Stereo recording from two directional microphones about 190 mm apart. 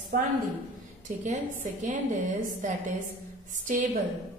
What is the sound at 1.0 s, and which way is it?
A woman's voice, 40° right (ahead or behind).